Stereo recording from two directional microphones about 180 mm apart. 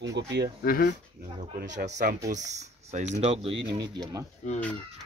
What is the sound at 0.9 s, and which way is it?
Speech, 40° right (ahead or behind).